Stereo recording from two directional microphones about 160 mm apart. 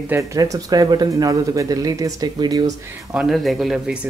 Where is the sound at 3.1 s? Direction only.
Centre (ahead or behind).